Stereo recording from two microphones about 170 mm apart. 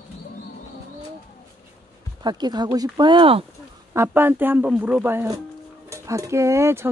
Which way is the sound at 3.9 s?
15° right (ahead or behind).